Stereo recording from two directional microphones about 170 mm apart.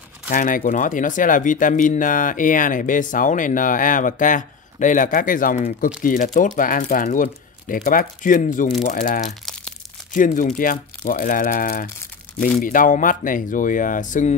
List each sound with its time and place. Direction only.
0.3 s speech: 50° left (ahead or behind)